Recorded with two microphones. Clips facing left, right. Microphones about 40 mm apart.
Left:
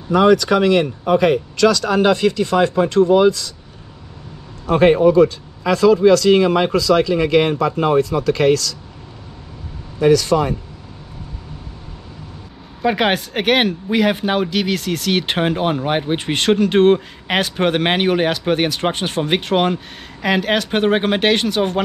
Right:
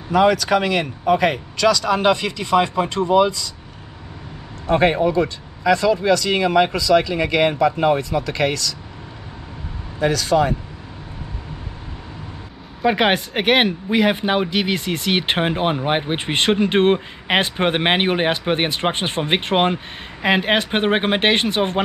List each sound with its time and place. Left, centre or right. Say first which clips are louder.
0.1 s speech: left 2 dB; centre
4.6 s speech: left 4 dB; centre
9.9 s speech: left 3 dB; centre
12.8 s speech: even; centre; by 21.8 s right